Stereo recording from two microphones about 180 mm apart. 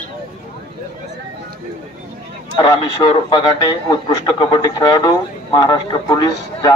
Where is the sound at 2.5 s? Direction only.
25° left (ahead or behind).